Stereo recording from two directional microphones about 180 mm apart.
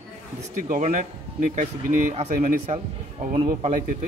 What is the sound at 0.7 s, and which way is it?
Speech, 40° right (ahead or behind).